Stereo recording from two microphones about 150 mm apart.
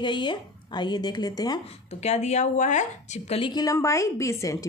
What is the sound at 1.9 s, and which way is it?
Speech, 45° left (ahead or behind).